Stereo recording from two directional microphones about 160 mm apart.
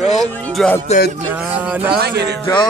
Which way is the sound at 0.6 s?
5° left (ahead or behind).